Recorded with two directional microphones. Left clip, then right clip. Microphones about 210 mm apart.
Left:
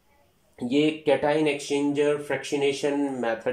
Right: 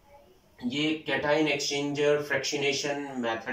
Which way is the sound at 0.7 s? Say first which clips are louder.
Left 7 dB; 40° left (ahead or behind).